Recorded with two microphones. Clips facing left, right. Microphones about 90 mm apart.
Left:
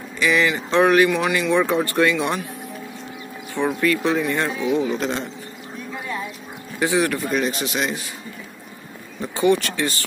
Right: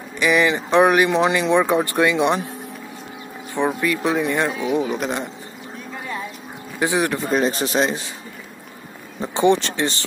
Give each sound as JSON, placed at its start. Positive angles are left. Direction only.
{"t": 0.2, "sound": "speech", "side_deg": -20}
{"t": 3.5, "sound": "speech", "side_deg": -15}
{"t": 6.8, "sound": "speech", "side_deg": -20}
{"t": 9.2, "sound": "speech", "side_deg": -25}